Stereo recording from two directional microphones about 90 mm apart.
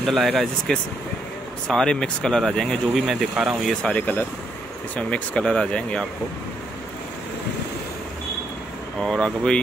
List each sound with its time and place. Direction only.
0.0 s speech: centre (ahead or behind)
2.9 s speech: 5° right (ahead or behind)
3.8 s speech: 15° left (ahead or behind)
9.0 s speech: 5° left (ahead or behind)